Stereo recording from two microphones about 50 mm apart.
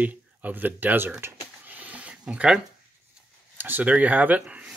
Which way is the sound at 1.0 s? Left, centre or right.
Right.